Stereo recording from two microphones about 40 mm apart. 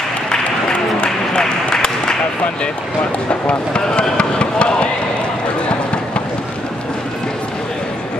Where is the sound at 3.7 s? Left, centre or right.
Left.